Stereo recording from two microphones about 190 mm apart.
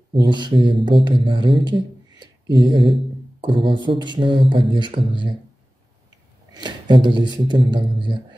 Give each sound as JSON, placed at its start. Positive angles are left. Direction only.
{"t": 0.1, "sound": "speech", "side_deg": -25}
{"t": 6.5, "sound": "speech", "side_deg": -25}